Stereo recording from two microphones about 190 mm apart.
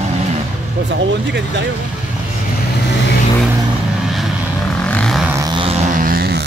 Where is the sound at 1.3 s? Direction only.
65° right (ahead or behind).